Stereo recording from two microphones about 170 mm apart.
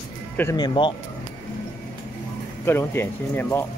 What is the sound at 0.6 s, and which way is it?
Speech, 30° left (ahead or behind).